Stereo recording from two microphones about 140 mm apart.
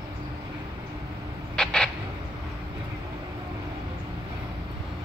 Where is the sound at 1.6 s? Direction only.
5° left (ahead or behind).